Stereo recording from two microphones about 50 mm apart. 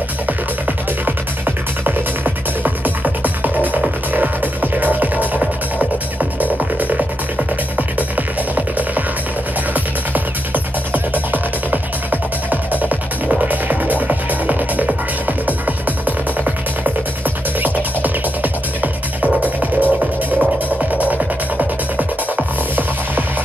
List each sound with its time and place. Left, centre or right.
0.3 s music: right
6.4 s music: right
8.5 s music: right
10.1 s music: right
17.6 s music: right